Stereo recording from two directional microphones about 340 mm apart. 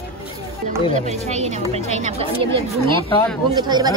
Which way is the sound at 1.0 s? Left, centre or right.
Centre.